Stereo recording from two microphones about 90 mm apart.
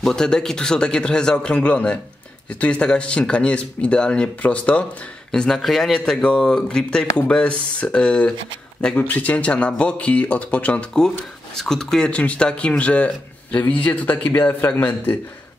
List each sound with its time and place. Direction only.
0.0 s speech: 5° left (ahead or behind)